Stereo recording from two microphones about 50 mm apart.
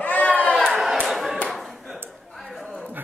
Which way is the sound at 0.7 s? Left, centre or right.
Centre.